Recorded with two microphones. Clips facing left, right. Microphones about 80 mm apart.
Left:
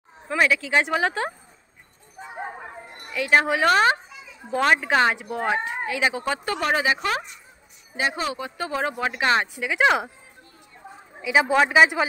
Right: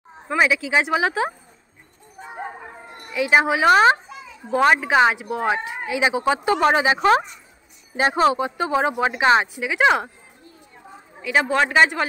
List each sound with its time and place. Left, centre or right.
0.4 s speech: centre
3.1 s speech: centre
6.6 s speech: right
8.0 s speech: right; by 9.4 s centre
9.4 s a woman's voice: centre
11.2 s a man's voice: centre